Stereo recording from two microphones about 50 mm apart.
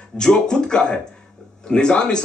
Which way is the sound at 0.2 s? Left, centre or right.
Centre.